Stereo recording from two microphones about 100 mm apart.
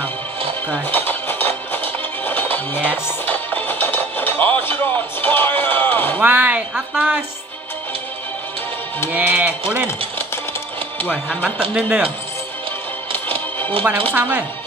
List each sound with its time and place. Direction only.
0.8 s music: 20° left (ahead or behind)
6.1 s a sound: 15° right (ahead or behind)
9.1 s music: 15° right (ahead or behind)
11.2 s music: 10° right (ahead or behind)
14.1 s speech: 20° right (ahead or behind)